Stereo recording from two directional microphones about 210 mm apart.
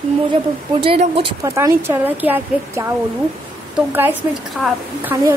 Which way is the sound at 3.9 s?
10° right (ahead or behind).